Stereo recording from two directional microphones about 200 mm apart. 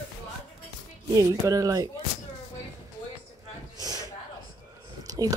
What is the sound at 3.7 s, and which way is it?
Snort, 20° right (ahead or behind).